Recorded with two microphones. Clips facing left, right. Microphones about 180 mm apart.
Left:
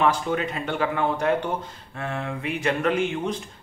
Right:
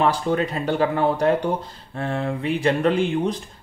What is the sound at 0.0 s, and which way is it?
Speech, 35° right (ahead or behind).